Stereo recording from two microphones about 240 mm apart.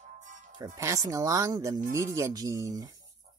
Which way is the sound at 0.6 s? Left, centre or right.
Centre.